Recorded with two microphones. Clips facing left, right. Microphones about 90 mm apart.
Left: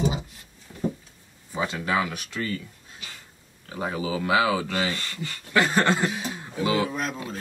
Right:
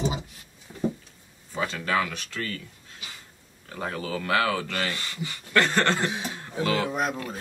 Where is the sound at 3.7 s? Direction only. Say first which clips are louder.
Left 3 dB; 10° left (ahead or behind).